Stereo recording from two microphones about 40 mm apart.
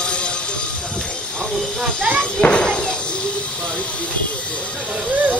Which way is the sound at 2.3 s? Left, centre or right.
Left.